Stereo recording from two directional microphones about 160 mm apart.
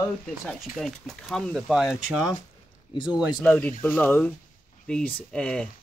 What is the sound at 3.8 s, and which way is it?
Speech, 10° left (ahead or behind).